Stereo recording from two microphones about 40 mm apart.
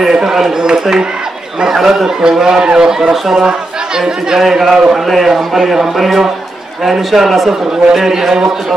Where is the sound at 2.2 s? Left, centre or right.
Centre.